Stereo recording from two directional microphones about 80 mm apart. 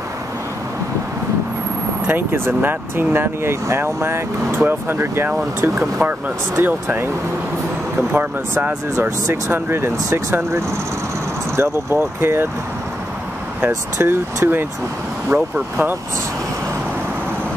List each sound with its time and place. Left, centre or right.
2.0 s speech: right
8.1 s speech: right
13.7 s speech: right